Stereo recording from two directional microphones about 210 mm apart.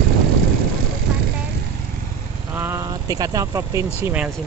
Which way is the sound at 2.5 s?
10° right (ahead or behind).